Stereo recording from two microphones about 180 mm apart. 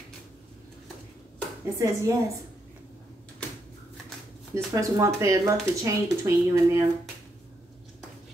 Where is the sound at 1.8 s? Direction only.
15° right (ahead or behind).